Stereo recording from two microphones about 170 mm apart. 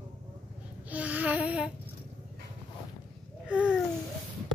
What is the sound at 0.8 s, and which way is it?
Babbling, 10° right (ahead or behind).